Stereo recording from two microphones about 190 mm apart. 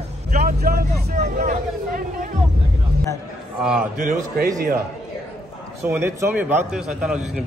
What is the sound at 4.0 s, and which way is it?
Speech, 45° right (ahead or behind).